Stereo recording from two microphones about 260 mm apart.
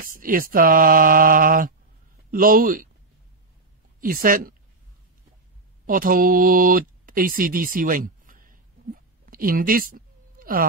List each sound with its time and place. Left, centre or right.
0.0 s mantra: right
4.0 s mantra: right
5.9 s a sound: right